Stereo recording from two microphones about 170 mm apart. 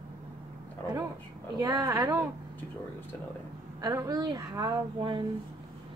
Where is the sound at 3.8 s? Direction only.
20° right (ahead or behind).